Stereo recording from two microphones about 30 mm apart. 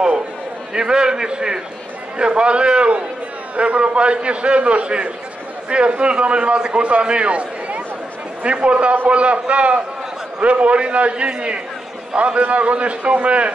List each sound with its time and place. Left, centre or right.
0.7 s a man's voice: right
12.4 s a man's voice: right